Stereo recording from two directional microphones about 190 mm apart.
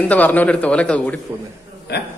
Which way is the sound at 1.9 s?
60° left (ahead or behind).